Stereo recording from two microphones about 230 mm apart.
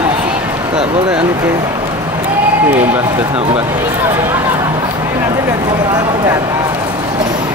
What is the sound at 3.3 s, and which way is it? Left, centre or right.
Speech, right.